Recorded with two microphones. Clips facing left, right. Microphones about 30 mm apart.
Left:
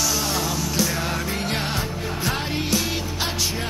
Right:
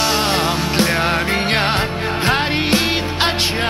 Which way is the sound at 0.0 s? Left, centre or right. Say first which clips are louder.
Right 7 dB; right.